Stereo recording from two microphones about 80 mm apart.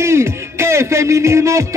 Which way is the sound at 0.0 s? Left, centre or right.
Right.